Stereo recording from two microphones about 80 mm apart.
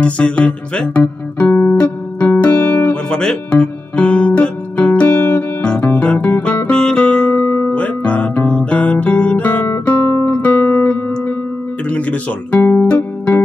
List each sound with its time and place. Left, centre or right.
0.0 s music: centre
1.0 s music: left
2.9 s guitar: centre
5.1 s music: left
5.6 s music: centre
7.4 s music: left
7.7 s guitar: centre
10.3 s music: centre
11.9 s guitar: centre
12.8 s music: centre